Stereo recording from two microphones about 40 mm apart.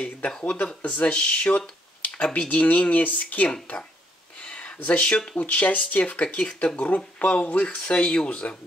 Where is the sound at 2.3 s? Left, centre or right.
Left.